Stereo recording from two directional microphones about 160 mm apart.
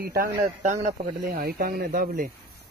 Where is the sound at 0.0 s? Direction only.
65° right (ahead or behind).